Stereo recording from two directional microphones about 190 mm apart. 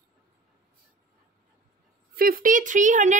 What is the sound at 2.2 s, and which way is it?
A woman's voice, 50° right (ahead or behind).